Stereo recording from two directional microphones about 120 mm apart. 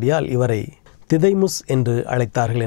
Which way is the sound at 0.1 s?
15° left (ahead or behind).